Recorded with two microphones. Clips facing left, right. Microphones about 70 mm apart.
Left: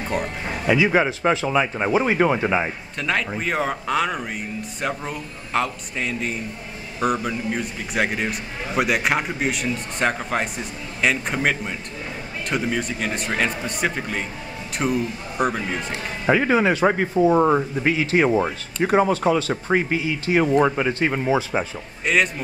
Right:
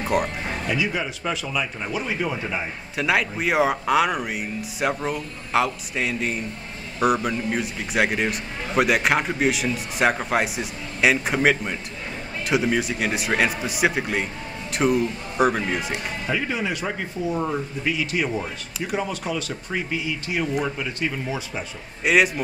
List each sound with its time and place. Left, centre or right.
0.0 s speech: centre
0.8 s speech: left
1.3 s speech: left
2.4 s speech: left
3.0 s a man's voice: centre
16.3 s speech: left
16.5 s speech: left
19.5 s speech: left
20.0 s speech: left
20.6 s speech: left
22.0 s a man's voice: centre